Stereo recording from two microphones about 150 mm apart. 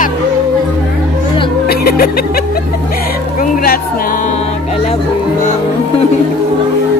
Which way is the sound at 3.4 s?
70° left (ahead or behind).